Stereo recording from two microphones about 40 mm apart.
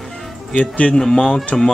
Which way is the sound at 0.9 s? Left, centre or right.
Centre.